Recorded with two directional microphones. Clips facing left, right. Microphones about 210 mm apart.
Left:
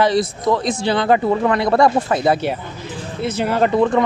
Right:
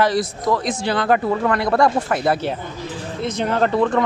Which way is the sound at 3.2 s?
5° left (ahead or behind).